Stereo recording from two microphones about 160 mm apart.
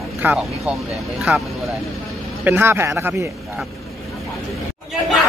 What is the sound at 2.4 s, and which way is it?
Speech, 15° right (ahead or behind).